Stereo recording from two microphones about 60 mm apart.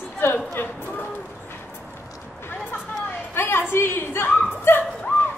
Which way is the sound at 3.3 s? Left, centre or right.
Left.